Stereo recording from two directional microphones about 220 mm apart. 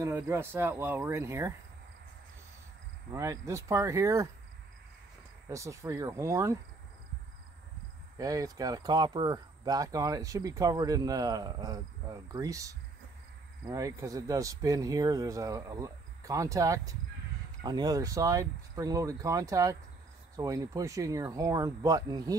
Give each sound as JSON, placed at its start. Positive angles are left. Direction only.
{"t": 0.0, "sound": "speech", "side_deg": -10}
{"t": 3.1, "sound": "speech", "side_deg": -15}
{"t": 5.5, "sound": "speech", "side_deg": -15}
{"t": 8.2, "sound": "speech", "side_deg": -15}